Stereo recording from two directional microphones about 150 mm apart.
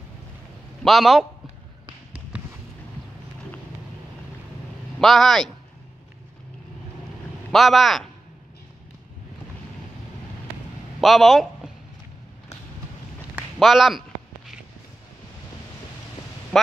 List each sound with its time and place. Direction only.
0.8 s speech: centre (ahead or behind)
2.3 s a sound: 5° right (ahead or behind)
5.0 s speech: centre (ahead or behind)
7.5 s speech: centre (ahead or behind)
11.0 s speech: centre (ahead or behind)
13.6 s a sound: centre (ahead or behind)
16.5 s a man's voice: 5° left (ahead or behind)